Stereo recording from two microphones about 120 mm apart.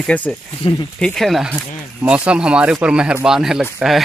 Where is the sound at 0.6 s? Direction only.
45° left (ahead or behind).